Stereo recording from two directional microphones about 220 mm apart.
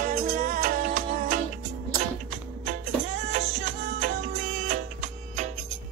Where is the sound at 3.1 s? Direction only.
30° right (ahead or behind).